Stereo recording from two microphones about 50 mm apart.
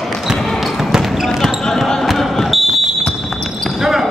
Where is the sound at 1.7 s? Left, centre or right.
Centre.